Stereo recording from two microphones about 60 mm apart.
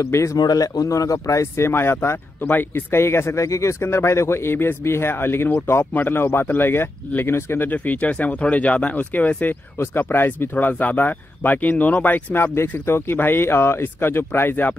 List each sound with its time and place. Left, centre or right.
0.0 s speech: left
7.7 s speech: left
12.8 s speech: left